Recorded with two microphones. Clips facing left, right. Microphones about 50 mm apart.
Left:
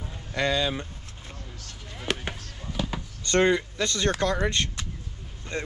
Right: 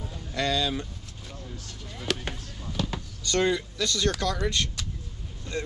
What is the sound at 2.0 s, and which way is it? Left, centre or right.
Basketball bounce, centre.